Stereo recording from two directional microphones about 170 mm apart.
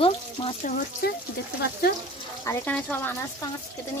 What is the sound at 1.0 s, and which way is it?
Speech, 65° left (ahead or behind).